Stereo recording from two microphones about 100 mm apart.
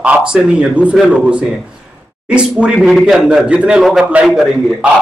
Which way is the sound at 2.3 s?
10° right (ahead or behind).